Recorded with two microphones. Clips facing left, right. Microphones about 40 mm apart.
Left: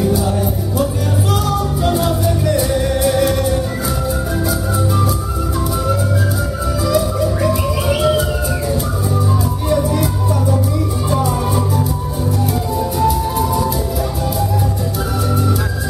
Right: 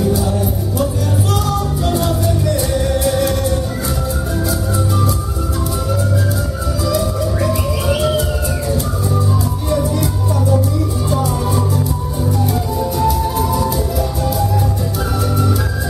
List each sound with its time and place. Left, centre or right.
1.3 s music: centre
6.9 s music: centre
12.7 s music: centre